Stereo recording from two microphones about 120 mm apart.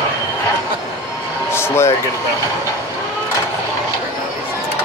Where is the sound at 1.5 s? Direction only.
20° left (ahead or behind).